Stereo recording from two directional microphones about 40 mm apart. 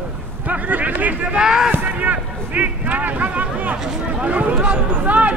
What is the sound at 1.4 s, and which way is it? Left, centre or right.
Speech, centre.